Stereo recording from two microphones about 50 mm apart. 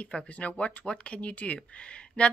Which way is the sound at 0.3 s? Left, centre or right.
Left.